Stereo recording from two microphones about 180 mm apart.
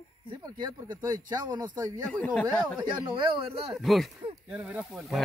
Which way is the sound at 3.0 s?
30° right (ahead or behind).